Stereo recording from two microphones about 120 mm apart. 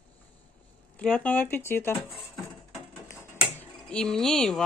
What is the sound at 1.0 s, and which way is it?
Speech, 15° left (ahead or behind).